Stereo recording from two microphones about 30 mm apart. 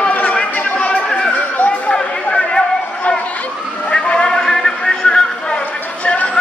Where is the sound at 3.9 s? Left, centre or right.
Left.